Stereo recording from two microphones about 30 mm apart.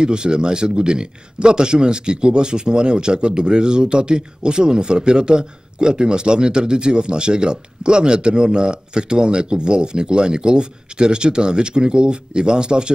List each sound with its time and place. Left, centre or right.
0.0 s speech: right